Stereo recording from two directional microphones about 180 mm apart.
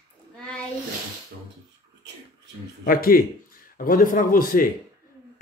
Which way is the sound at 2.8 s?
55° left (ahead or behind).